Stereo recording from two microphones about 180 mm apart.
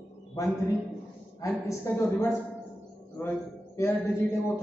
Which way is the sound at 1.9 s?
15° left (ahead or behind).